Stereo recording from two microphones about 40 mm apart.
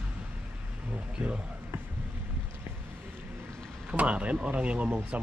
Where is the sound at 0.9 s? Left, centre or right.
Right.